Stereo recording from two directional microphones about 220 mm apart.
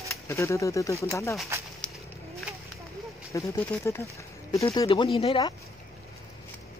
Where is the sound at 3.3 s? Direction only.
15° left (ahead or behind).